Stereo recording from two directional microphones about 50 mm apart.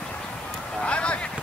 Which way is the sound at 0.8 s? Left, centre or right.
Left.